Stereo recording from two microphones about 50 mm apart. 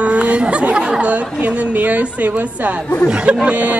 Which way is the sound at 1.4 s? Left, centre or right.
Right.